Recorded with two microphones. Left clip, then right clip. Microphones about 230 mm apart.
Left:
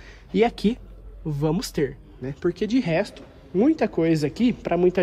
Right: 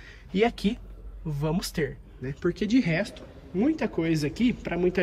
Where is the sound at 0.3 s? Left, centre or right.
Centre.